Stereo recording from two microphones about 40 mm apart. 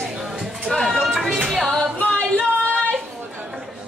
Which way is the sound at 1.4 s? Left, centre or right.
Centre.